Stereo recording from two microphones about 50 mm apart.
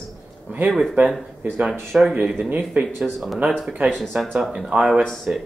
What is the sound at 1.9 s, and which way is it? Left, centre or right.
Speech, right.